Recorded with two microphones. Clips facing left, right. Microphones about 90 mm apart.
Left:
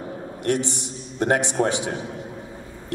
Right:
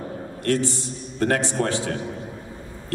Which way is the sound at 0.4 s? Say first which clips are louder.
Right 1 dB; 20° left (ahead or behind).